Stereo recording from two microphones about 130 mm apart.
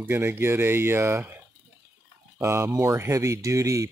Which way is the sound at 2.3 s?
20° right (ahead or behind).